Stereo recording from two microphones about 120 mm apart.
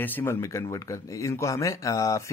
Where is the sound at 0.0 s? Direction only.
15° left (ahead or behind).